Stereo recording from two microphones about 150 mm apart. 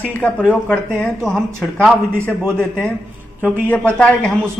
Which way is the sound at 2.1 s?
15° right (ahead or behind).